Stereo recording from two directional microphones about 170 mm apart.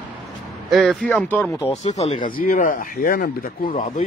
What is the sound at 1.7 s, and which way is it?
Speech, 40° left (ahead or behind).